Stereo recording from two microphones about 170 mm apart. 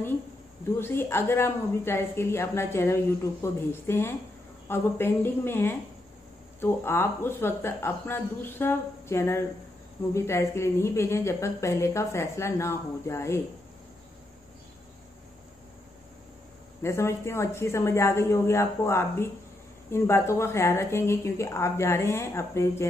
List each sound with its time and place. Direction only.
0.7 s a woman's voice: 15° left (ahead or behind)
16.8 s a woman's voice: 15° left (ahead or behind)